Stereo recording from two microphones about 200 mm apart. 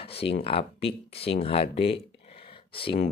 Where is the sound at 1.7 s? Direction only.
25° left (ahead or behind).